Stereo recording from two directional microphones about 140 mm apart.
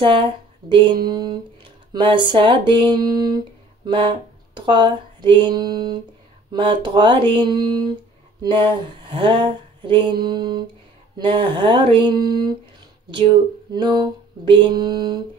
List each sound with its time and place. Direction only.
0.0 s speech: 35° right (ahead or behind)
3.8 s a sound: 35° right (ahead or behind)
10.2 s speech: 30° right (ahead or behind)
13.7 s speech: 30° right (ahead or behind)